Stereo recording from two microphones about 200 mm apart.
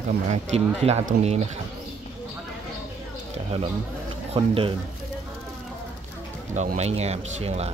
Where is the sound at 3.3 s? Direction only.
25° right (ahead or behind).